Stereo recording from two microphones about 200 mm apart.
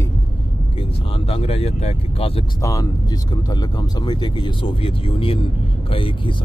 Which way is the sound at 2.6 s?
15° left (ahead or behind).